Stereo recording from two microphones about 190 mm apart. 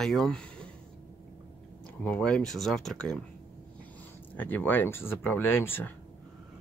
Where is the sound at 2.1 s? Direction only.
5° left (ahead or behind).